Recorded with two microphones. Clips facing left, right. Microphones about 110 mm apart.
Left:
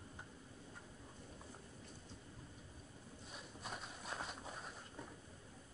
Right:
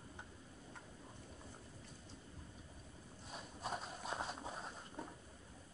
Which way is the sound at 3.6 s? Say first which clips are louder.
Right 6 dB; 35° right (ahead or behind).